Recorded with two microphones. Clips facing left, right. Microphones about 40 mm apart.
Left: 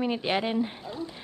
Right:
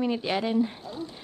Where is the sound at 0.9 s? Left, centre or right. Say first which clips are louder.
Even; left.